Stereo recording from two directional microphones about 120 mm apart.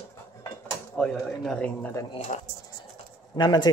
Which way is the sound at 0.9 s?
5° left (ahead or behind).